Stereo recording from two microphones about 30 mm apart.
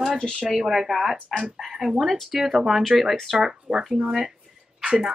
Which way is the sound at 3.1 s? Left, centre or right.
Centre.